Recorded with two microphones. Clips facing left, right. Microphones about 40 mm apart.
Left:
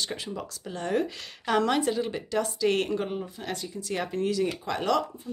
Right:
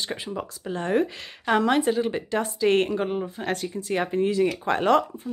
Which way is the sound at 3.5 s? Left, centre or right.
Right.